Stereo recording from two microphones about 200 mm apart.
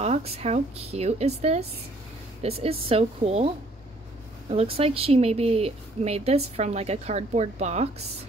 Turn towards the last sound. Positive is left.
turn(degrees=-35)  # may be behind; listen again after turning